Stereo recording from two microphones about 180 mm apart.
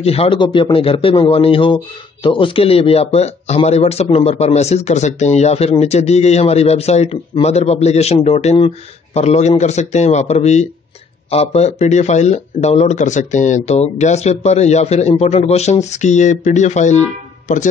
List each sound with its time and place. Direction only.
0.0 s speech: 35° left (ahead or behind)